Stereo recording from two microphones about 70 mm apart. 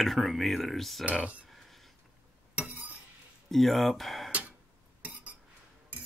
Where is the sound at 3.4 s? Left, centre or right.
Centre.